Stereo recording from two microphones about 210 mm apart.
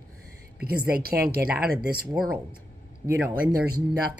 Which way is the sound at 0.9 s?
45° right (ahead or behind).